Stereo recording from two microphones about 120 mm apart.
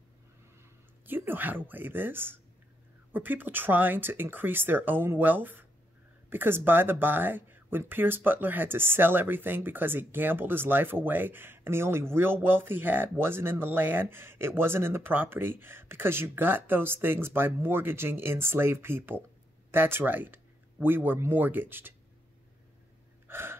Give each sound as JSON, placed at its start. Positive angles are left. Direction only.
{"t": 1.0, "sound": "speech", "side_deg": -15}
{"t": 23.2, "sound": "gasp", "side_deg": -20}